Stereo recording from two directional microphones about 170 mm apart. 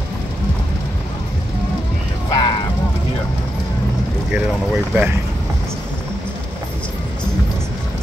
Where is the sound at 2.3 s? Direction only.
25° left (ahead or behind).